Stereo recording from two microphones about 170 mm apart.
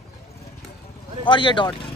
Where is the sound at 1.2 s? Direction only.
30° left (ahead or behind).